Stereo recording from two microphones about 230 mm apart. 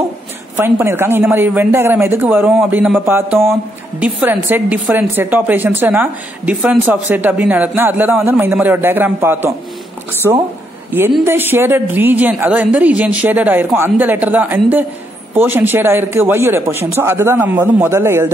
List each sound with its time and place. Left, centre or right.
0.6 s a woman's voice: centre